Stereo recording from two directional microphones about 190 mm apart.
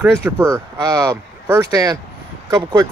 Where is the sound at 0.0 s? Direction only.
10° right (ahead or behind).